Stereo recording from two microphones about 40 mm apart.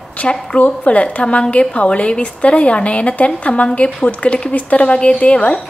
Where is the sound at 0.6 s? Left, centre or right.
Left.